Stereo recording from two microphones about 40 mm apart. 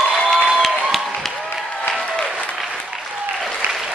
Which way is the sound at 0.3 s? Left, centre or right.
Centre.